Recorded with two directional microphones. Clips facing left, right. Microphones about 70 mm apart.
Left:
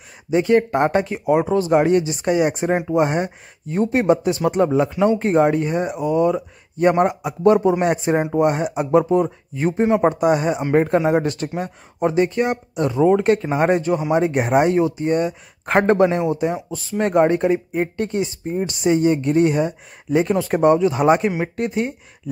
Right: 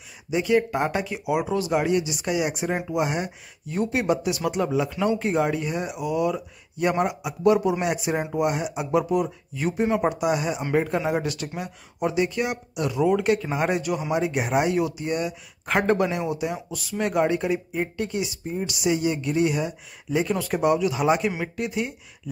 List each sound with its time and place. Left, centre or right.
0.3 s speech: left